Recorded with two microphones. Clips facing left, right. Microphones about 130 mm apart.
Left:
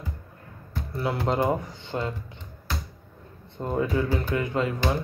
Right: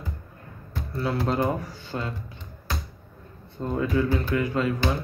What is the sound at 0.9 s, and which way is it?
Mantra, 20° left (ahead or behind).